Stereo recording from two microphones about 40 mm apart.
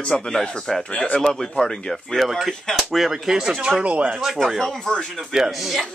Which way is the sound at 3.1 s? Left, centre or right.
Centre.